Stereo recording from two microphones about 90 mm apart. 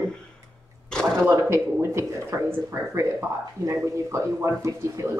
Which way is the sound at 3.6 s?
35° right (ahead or behind).